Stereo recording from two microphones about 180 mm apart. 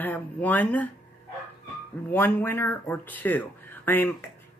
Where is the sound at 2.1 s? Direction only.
10° left (ahead or behind).